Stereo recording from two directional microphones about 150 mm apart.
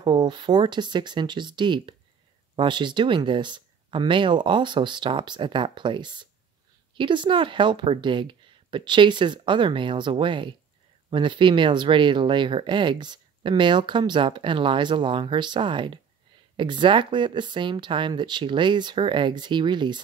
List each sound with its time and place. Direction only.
0.0 s speech: 30° right (ahead or behind)